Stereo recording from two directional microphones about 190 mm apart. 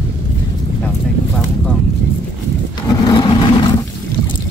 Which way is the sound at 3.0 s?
20° left (ahead or behind).